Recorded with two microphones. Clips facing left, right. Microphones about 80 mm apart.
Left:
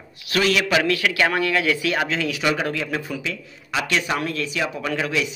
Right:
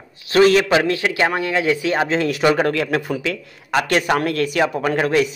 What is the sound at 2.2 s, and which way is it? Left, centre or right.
A man's voice, right.